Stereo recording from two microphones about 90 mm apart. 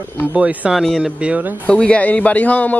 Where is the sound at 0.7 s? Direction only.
5° right (ahead or behind).